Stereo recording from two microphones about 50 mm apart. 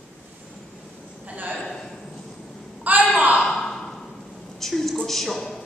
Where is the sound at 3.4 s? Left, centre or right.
Centre.